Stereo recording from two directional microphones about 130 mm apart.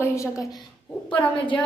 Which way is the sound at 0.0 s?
20° left (ahead or behind).